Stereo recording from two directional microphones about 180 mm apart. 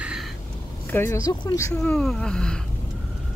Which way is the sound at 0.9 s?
15° left (ahead or behind).